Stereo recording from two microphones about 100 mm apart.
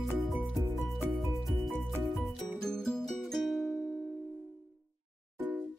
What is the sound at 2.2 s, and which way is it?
Music, 5° left (ahead or behind).